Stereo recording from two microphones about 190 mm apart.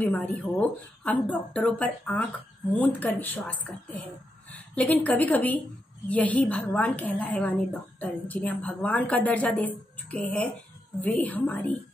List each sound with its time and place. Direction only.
0.0 s a woman's voice: 10° left (ahead or behind)
4.7 s a woman's voice: 10° left (ahead or behind)